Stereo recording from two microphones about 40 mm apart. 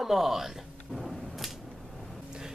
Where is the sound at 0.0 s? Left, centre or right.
Centre.